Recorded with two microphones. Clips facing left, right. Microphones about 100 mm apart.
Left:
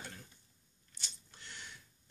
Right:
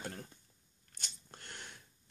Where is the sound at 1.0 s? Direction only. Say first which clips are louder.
Right 2 dB; 50° right (ahead or behind).